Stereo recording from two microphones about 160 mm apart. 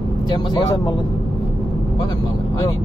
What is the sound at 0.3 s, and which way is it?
Speech, 25° left (ahead or behind).